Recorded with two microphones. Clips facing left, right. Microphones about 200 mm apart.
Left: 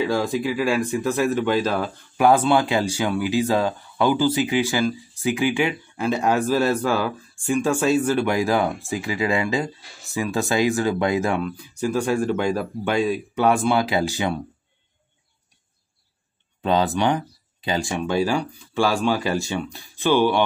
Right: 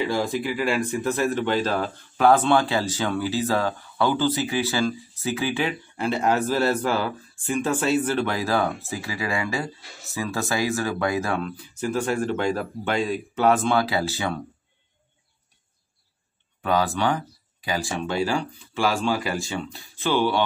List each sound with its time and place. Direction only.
0.4 s speech: 15° left (ahead or behind)
16.6 s speech: 20° left (ahead or behind)